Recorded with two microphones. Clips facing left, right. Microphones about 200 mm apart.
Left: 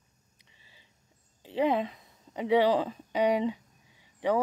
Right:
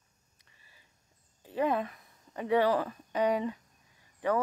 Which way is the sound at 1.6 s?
20° left (ahead or behind).